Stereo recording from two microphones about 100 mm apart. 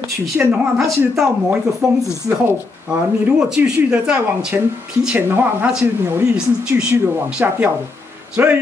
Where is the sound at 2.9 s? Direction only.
10° right (ahead or behind).